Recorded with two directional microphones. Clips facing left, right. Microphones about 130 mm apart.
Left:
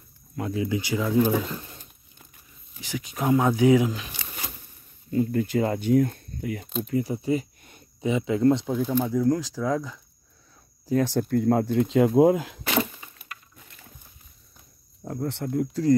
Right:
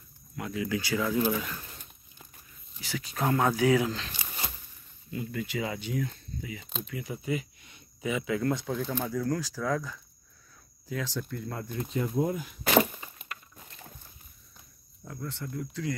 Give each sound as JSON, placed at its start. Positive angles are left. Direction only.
{"t": 0.4, "sound": "speech", "side_deg": 30}
{"t": 2.8, "sound": "speech", "side_deg": 15}
{"t": 5.1, "sound": "speech", "side_deg": 40}
{"t": 6.9, "sound": "speech", "side_deg": 35}
{"t": 11.0, "sound": "speech", "side_deg": 60}
{"t": 12.6, "sound": "a sound", "side_deg": -25}
{"t": 15.2, "sound": "speech", "side_deg": 60}